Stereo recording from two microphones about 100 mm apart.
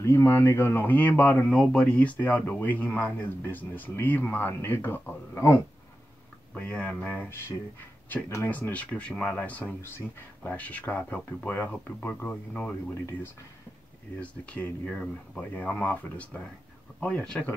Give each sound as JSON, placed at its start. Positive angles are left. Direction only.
{"t": 0.0, "sound": "speech", "side_deg": 25}
{"t": 6.5, "sound": "speech", "side_deg": 10}
{"t": 8.1, "sound": "speech", "side_deg": 30}
{"t": 8.5, "sound": "speech", "side_deg": 15}
{"t": 14.2, "sound": "speech", "side_deg": 10}